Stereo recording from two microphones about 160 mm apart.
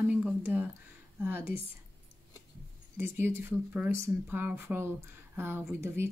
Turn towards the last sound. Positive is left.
turn(degrees=-15)  # may be behind; listen again after turning